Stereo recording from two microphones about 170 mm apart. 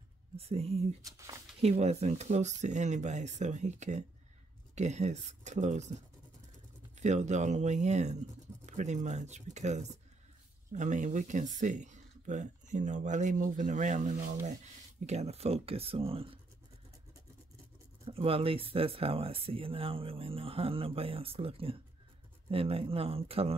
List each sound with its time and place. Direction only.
0.4 s speech: 35° right (ahead or behind)
1.0 s speech: 20° right (ahead or behind)
1.6 s speech: 40° right (ahead or behind)
7.0 s speech: 45° right (ahead or behind)
18.0 s speech: 35° right (ahead or behind)